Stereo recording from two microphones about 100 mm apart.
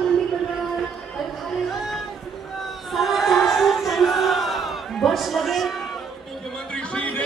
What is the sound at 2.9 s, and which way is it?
Crowd, centre (ahead or behind).